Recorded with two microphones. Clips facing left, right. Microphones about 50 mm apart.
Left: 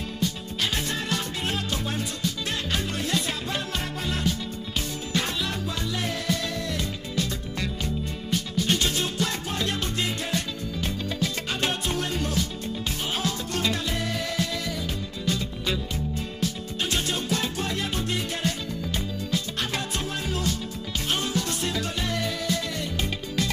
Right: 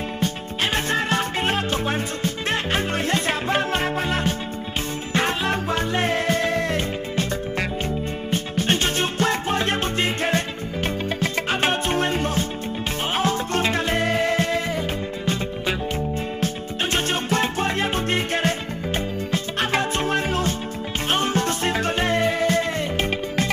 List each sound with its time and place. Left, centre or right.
0.2 s music: right